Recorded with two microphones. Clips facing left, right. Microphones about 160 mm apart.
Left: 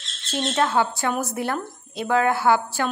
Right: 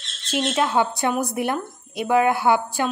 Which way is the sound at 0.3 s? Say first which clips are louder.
Right 1 dB; 10° right (ahead or behind).